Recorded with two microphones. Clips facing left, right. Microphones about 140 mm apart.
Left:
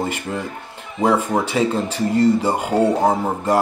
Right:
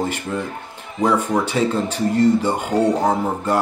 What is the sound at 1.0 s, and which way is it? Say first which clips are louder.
Speech: even; 35° left (ahead or behind).